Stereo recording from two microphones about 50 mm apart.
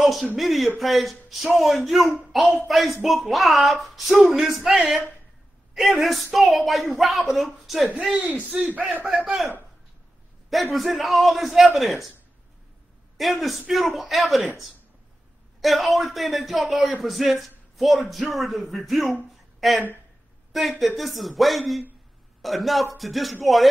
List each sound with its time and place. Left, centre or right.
0.0 s speech: centre
8.5 s speech: right
10.5 s speech: centre
13.2 s speech: centre
15.6 s speech: centre
20.8 s speech: centre